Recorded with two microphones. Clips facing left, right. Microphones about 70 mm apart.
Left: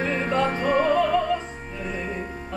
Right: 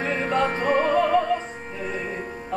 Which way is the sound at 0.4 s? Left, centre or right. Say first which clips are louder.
Even; right.